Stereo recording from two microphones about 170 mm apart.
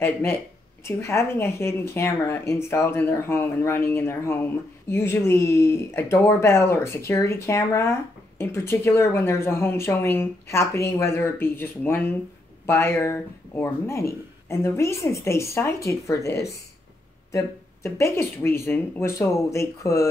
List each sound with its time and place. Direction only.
0.0 s speech: 10° left (ahead or behind)